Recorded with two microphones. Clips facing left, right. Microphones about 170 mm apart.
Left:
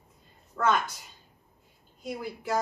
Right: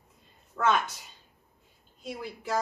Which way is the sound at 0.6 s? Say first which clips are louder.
Even; centre (ahead or behind).